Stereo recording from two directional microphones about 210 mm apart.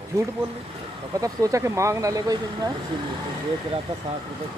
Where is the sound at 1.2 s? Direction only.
15° right (ahead or behind).